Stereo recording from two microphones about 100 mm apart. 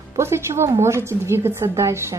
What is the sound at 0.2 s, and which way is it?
A woman's voice, 25° right (ahead or behind).